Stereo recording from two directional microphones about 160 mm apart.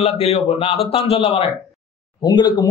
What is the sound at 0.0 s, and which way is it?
A man's voice, 40° left (ahead or behind).